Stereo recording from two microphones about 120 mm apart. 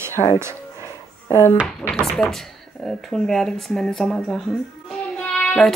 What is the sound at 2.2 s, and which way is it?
A child's voice, 5° left (ahead or behind).